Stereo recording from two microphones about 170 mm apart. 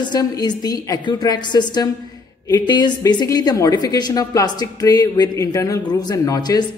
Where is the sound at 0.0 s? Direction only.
25° left (ahead or behind).